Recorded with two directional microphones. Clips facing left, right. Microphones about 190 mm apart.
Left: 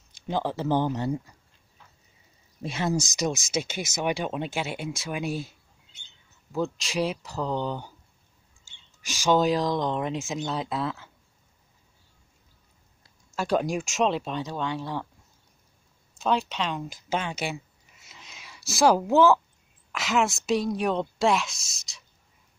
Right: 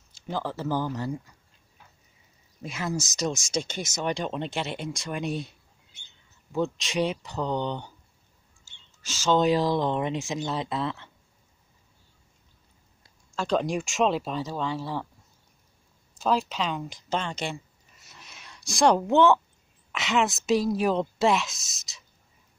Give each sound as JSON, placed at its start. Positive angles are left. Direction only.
{"t": 0.1, "sound": "speech", "side_deg": 20}
{"t": 2.6, "sound": "speech", "side_deg": 30}
{"t": 3.0, "sound": "speech", "side_deg": 10}
{"t": 6.5, "sound": "a woman's voice", "side_deg": 0}
{"t": 9.0, "sound": "speech", "side_deg": 15}
{"t": 9.4, "sound": "a woman's voice", "side_deg": 0}
{"t": 13.3, "sound": "a woman's voice", "side_deg": 5}
{"t": 16.2, "sound": "a woman's voice", "side_deg": 0}